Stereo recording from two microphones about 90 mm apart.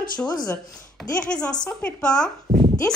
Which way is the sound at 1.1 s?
10° left (ahead or behind).